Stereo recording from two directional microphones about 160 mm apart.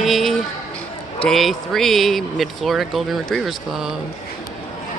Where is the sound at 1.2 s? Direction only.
Centre (ahead or behind).